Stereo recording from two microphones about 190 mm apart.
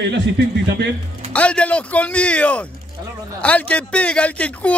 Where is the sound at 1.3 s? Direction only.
5° left (ahead or behind).